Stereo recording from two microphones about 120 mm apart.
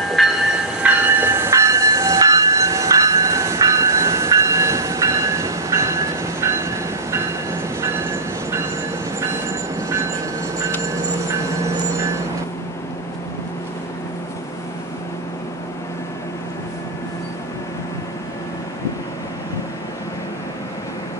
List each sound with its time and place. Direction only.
0.2 s train: centre (ahead or behind)
0.8 s train: 20° right (ahead or behind)
7.8 s vehicle: 25° right (ahead or behind)
9.8 s train: 25° right (ahead or behind)